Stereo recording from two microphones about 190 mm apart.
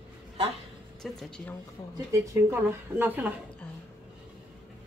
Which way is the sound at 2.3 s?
10° right (ahead or behind).